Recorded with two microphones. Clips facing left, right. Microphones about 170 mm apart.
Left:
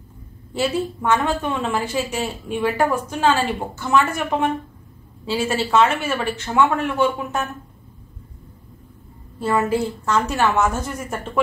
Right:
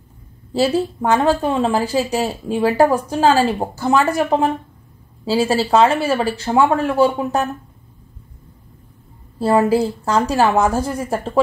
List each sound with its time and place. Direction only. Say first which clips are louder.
0.5 s a woman's voice: right 5 dB; 35° right (ahead or behind)
9.4 s a woman's voice: right 5 dB; 35° right (ahead or behind)